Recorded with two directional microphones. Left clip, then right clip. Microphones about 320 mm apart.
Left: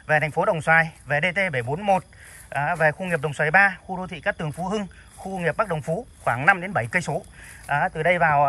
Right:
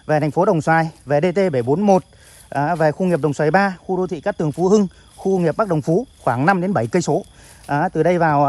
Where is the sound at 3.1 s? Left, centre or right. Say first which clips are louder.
Right 5 dB; centre.